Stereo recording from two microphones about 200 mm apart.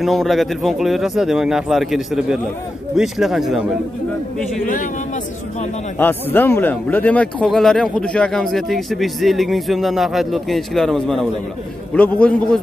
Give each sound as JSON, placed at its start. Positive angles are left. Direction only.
{"t": 0.0, "sound": "speech", "side_deg": 0}
{"t": 4.6, "sound": "a man's voice", "side_deg": 40}
{"t": 5.9, "sound": "speech", "side_deg": 10}